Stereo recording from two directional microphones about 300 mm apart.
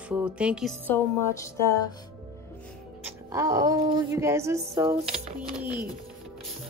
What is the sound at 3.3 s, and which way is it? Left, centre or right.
Speech, centre.